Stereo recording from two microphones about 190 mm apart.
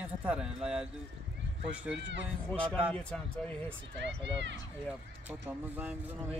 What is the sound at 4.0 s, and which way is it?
Speech, 70° right (ahead or behind).